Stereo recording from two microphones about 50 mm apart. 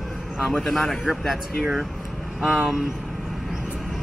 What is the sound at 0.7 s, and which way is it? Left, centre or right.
Speech, centre.